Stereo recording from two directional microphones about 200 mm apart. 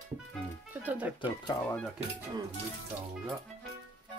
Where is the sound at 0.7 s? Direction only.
10° right (ahead or behind).